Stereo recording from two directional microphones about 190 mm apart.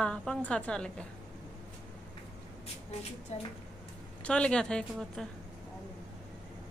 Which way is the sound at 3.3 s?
35° left (ahead or behind).